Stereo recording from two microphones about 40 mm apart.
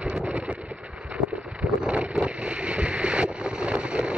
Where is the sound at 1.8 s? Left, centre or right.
Right.